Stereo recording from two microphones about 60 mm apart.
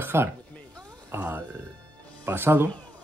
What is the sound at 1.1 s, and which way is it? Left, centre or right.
Speech, right.